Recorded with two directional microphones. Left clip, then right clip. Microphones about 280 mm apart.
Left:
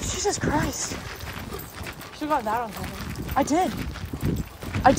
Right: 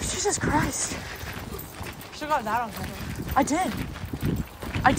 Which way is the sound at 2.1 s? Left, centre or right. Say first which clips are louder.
Left 1 dB; left.